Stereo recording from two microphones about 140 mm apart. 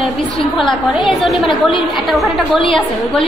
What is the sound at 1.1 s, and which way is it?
A woman's voice, centre (ahead or behind).